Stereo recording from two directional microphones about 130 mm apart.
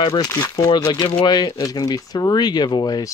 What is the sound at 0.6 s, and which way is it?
Speech, 30° left (ahead or behind).